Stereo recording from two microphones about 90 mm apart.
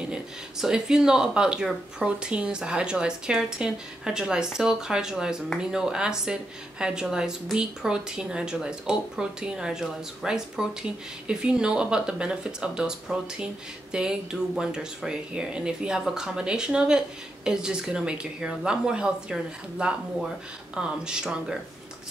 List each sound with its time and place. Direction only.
0.0 s a woman's voice: 10° right (ahead or behind)